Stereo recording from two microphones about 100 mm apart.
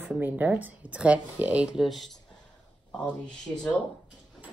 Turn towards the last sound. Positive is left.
turn(degrees=15)  # may be behind; listen again after turning